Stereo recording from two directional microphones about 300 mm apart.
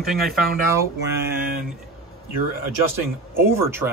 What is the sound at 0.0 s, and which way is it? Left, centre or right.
Speech, centre.